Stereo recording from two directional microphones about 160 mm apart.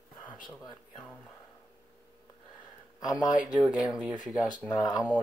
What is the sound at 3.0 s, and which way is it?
Speech, 25° left (ahead or behind).